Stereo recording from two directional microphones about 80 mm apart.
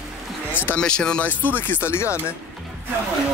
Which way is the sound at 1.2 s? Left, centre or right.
Left.